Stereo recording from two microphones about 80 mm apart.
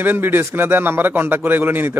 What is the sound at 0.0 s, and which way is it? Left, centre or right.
A man's voice, right.